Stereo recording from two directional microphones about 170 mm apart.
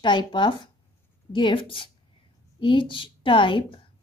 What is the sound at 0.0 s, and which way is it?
Speech, 30° left (ahead or behind).